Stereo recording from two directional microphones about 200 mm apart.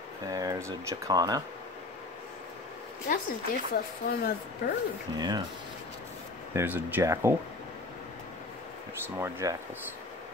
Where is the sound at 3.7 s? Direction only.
50° left (ahead or behind).